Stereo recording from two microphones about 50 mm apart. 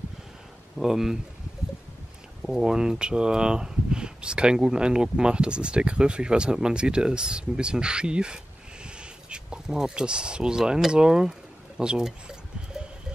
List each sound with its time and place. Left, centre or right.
0.7 s speech: centre
2.5 s speech: centre
12.0 s a sound: centre